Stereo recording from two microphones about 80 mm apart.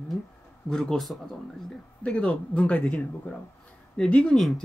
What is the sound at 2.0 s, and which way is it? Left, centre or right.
Speech, centre.